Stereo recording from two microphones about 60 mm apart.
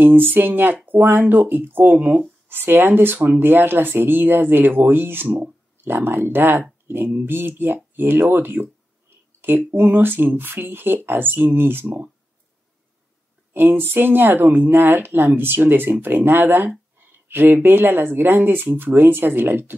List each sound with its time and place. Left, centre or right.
0.0 s speech: right
9.7 s speech: right
13.5 s speech: right